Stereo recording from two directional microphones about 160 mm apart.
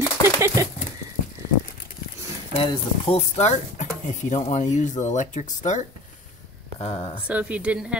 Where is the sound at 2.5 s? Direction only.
35° left (ahead or behind).